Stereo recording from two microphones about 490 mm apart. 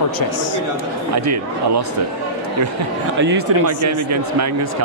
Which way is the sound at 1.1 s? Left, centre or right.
Right.